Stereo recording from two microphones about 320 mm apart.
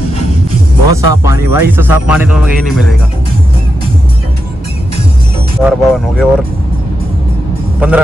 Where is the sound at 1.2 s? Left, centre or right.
Centre.